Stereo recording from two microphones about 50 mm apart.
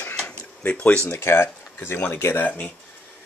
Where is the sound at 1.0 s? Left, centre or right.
Left.